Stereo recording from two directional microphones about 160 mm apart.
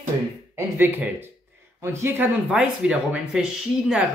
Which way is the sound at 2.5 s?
5° right (ahead or behind).